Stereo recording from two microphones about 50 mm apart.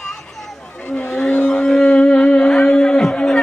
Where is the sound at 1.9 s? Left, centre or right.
Left.